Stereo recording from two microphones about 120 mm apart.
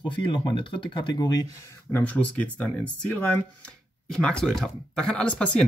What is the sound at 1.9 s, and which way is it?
Speech, 10° left (ahead or behind).